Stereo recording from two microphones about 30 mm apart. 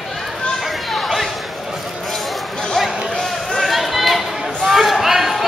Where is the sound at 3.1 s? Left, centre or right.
Centre.